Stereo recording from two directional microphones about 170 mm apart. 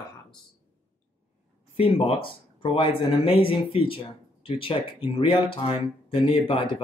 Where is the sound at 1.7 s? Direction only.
35° left (ahead or behind).